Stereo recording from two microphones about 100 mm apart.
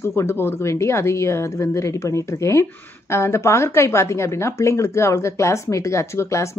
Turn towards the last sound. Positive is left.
turn(degrees=30)  # may be behind; listen again after turning